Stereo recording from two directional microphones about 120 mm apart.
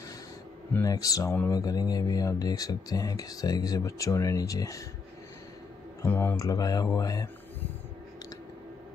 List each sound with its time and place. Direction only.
0.7 s speech: 30° left (ahead or behind)
6.0 s speech: 20° left (ahead or behind)